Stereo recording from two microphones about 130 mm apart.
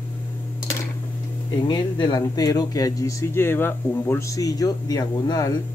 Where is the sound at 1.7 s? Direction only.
35° left (ahead or behind).